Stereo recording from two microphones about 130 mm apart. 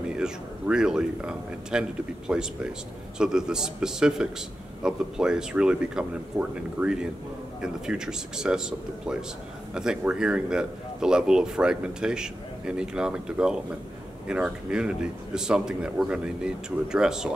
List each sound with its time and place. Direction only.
0.1 s a man's voice: 5° right (ahead or behind)